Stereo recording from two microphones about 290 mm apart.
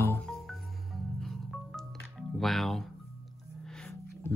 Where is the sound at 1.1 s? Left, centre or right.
Centre.